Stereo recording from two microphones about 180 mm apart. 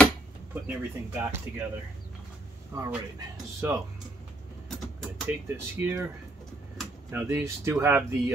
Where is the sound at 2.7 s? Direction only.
15° right (ahead or behind).